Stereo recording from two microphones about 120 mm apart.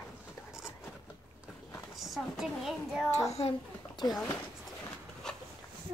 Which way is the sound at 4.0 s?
40° left (ahead or behind).